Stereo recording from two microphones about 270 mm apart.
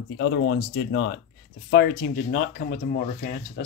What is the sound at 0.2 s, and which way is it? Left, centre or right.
Speech, left.